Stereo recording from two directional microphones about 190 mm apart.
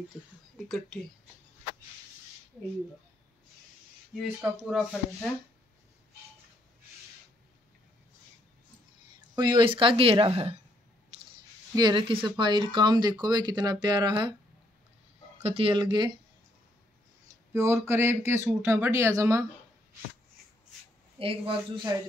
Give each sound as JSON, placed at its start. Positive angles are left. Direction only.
{"t": 0.6, "sound": "speech", "side_deg": 0}
{"t": 4.2, "sound": "speech", "side_deg": -5}
{"t": 9.3, "sound": "speech", "side_deg": -20}
{"t": 11.7, "sound": "speech", "side_deg": -25}
{"t": 15.4, "sound": "speech", "side_deg": -30}
{"t": 17.5, "sound": "speech", "side_deg": -15}
{"t": 21.2, "sound": "speech", "side_deg": -30}